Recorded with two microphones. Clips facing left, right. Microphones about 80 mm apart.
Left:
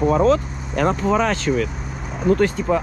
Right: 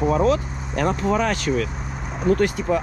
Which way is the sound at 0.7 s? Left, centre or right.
Left.